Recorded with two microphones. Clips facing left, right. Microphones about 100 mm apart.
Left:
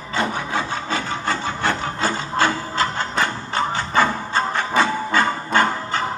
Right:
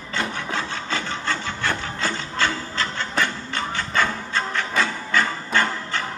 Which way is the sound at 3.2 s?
25° left (ahead or behind).